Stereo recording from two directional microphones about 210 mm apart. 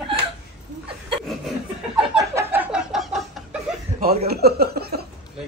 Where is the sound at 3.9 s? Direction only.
50° right (ahead or behind).